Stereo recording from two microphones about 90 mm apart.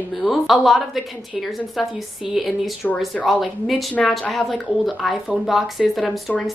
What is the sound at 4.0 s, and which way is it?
Speech, 15° left (ahead or behind).